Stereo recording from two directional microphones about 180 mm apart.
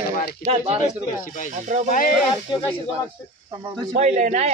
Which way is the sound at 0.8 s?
45° left (ahead or behind).